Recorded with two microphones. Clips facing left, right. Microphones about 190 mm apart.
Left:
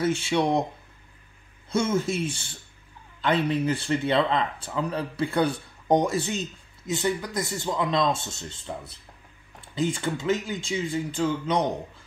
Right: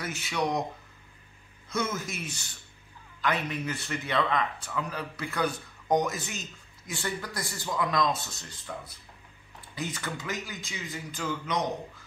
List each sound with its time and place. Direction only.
0.0 s speech: 25° left (ahead or behind)
1.7 s speech: 30° left (ahead or behind)
6.9 s speech: 20° left (ahead or behind)